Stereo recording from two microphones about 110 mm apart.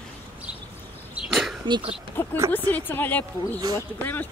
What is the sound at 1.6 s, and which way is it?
Speech, 45° right (ahead or behind).